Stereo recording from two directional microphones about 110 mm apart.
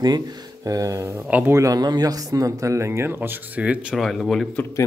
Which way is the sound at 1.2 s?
15° right (ahead or behind).